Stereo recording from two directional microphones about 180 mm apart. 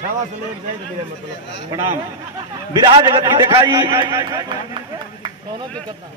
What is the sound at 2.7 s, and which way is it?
A man's voice, 25° right (ahead or behind).